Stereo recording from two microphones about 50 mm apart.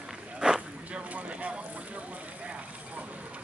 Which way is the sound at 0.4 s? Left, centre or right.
Centre.